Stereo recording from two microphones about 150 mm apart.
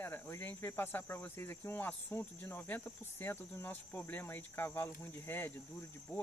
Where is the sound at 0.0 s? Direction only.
15° left (ahead or behind).